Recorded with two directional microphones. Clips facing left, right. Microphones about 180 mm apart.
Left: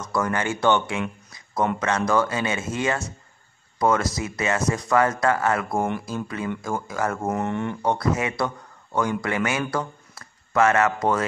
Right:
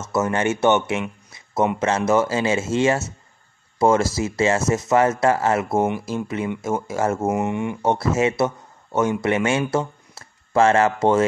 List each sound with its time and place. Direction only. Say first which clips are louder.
0.0 s speech: right 4 dB; 25° right (ahead or behind)
5.8 s speech: right 4 dB; 5° right (ahead or behind)
6.0 s speech: right 4 dB; 25° right (ahead or behind)
7.2 s speech: right 3 dB; 10° right (ahead or behind)
7.8 s speech: right 5 dB; 25° right (ahead or behind)